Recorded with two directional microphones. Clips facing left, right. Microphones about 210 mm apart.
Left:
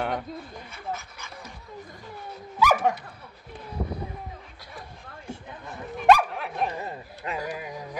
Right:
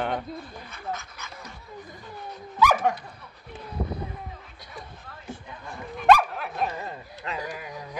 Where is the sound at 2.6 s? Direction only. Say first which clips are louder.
Even; 5° left (ahead or behind).